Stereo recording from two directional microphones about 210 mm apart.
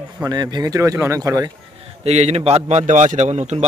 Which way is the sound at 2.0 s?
30° right (ahead or behind).